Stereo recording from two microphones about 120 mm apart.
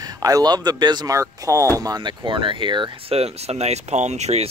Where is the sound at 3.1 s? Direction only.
60° right (ahead or behind).